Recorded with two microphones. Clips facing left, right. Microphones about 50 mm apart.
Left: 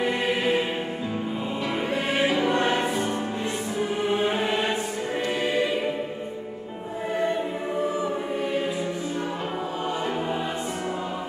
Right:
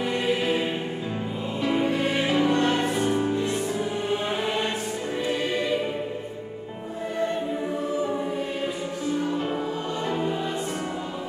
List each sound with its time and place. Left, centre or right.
0.0 s music: centre
2.5 s music: left
3.0 s music: centre
4.1 s music: centre
5.3 s choir: centre